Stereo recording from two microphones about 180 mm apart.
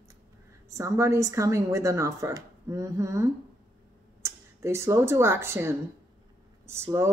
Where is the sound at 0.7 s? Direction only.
15° right (ahead or behind).